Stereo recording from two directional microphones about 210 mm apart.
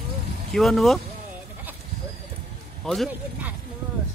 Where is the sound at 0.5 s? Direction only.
Centre (ahead or behind).